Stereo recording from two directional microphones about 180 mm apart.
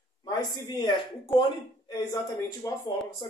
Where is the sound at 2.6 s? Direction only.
20° left (ahead or behind).